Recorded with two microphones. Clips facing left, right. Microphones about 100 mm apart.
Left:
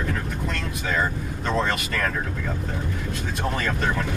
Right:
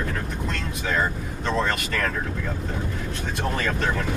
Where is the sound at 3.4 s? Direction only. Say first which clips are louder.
Even; 5° left (ahead or behind).